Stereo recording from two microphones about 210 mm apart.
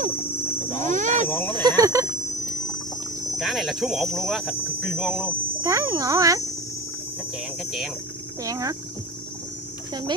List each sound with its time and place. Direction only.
0.8 s speech: 35° right (ahead or behind)
1.6 s speech: 20° right (ahead or behind)
3.3 s speech: centre (ahead or behind)
5.6 s speech: 15° right (ahead or behind)
8.5 s speech: 15° right (ahead or behind)